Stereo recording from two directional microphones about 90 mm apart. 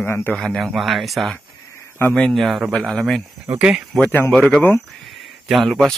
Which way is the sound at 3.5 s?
10° right (ahead or behind).